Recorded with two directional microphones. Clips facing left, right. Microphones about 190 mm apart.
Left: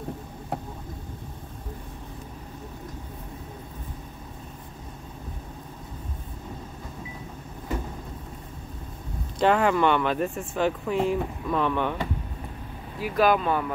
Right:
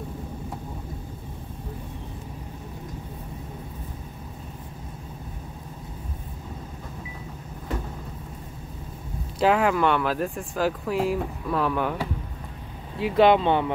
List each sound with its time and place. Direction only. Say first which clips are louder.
9.4 s speech: even; centre (ahead or behind)
13.0 s speech: right 4 dB; 25° right (ahead or behind)